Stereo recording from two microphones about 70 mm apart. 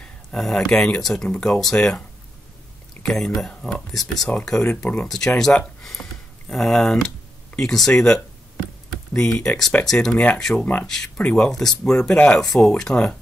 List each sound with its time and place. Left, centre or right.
0.0 s speech: centre
4.5 s speech: centre
5.0 s speech: centre
10.1 s speech: centre
11.3 s speech: centre